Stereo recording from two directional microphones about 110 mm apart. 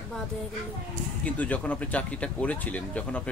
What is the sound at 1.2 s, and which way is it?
Speech, 15° left (ahead or behind).